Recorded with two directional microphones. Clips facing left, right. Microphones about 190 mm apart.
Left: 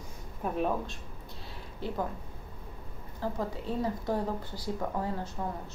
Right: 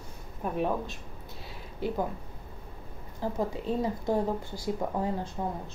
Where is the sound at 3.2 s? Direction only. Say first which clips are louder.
Right 2 dB; 15° right (ahead or behind).